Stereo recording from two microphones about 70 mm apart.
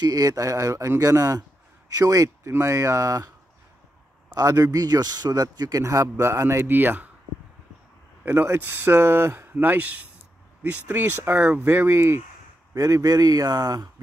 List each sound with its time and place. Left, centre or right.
0.0 s speech: right
4.4 s speech: right
8.5 s speech: right
12.7 s speech: right